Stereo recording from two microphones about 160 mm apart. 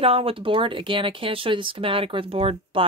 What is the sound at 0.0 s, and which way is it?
Speech, 35° right (ahead or behind).